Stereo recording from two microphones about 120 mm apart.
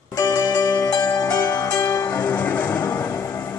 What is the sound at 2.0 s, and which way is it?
Music, 15° left (ahead or behind).